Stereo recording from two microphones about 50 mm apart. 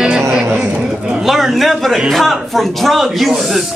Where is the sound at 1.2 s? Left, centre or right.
Centre.